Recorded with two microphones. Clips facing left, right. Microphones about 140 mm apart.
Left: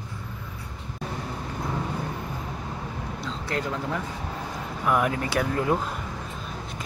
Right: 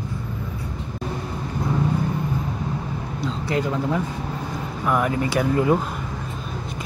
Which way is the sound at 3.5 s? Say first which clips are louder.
Right 6 dB; 5° right (ahead or behind).